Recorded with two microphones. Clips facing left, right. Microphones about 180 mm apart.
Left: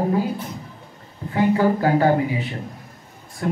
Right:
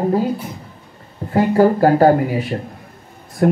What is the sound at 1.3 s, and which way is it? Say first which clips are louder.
Speech: right 5 dB; 40° right (ahead or behind).